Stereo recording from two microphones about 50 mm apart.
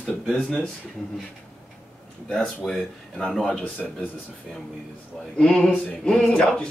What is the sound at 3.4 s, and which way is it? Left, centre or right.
Speech, left.